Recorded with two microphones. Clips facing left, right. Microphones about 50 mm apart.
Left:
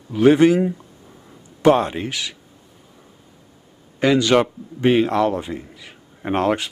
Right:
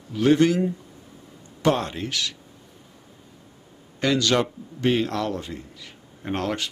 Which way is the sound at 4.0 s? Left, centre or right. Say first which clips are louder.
Left 6 dB; centre.